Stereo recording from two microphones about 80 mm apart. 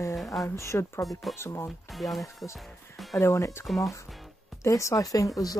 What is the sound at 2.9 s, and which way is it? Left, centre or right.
Music, centre.